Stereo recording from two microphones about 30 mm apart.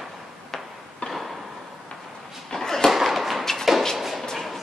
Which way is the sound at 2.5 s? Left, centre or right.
Centre.